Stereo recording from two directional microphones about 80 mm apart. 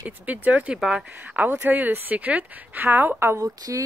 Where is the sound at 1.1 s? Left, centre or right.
Right.